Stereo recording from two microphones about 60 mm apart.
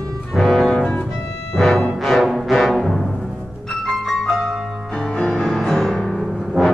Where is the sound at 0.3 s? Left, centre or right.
Centre.